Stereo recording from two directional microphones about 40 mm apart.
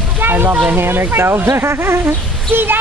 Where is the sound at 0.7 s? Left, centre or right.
Right.